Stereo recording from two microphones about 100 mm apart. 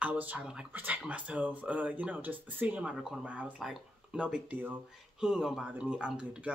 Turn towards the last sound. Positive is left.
turn(degrees=-10)  # may be behind; listen again after turning